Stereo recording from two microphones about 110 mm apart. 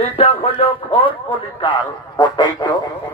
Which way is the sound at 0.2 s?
60° left (ahead or behind).